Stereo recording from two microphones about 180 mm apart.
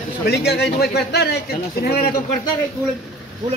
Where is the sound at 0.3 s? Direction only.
65° left (ahead or behind).